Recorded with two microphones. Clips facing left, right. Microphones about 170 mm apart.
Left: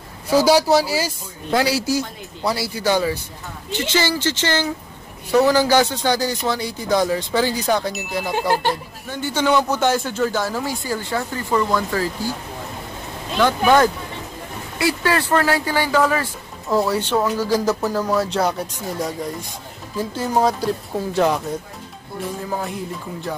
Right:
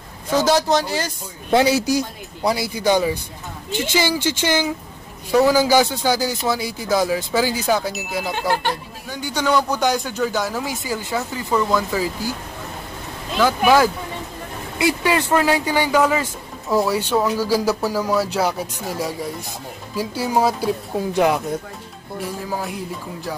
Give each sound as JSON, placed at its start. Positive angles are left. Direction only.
{"t": 0.3, "sound": "speech", "side_deg": 10}
{"t": 1.5, "sound": "speech", "side_deg": -20}
{"t": 10.7, "sound": "speech", "side_deg": -20}
{"t": 13.4, "sound": "speech", "side_deg": -5}
{"t": 22.2, "sound": "speech", "side_deg": 0}